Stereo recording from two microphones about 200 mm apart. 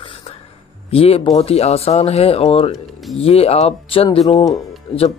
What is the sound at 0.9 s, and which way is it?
Speech, 30° left (ahead or behind).